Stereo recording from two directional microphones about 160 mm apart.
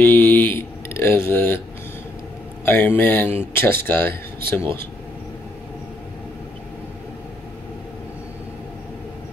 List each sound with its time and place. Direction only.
0.0 s speech: 10° left (ahead or behind)
2.6 s speech: 15° left (ahead or behind)